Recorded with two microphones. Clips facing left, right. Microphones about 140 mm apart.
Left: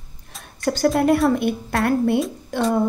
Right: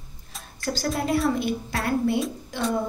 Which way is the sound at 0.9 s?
60° left (ahead or behind).